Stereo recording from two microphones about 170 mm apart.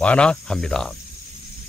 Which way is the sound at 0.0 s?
5° left (ahead or behind).